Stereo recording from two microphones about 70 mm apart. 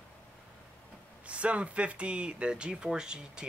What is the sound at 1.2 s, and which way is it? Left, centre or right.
Speech, centre.